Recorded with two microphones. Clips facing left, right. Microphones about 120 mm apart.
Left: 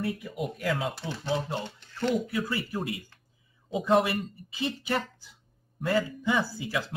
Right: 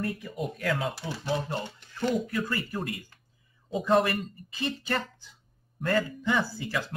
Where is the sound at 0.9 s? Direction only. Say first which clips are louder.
Even; 10° right (ahead or behind).